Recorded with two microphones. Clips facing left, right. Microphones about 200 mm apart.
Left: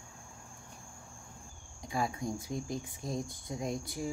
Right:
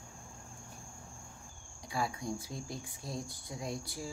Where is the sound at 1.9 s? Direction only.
20° left (ahead or behind).